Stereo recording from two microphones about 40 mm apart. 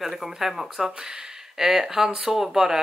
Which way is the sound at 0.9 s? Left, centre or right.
Centre.